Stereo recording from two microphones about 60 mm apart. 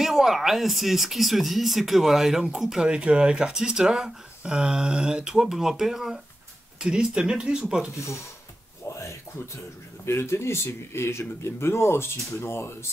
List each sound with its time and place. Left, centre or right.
0.0 s speech: centre
10.0 s speech: left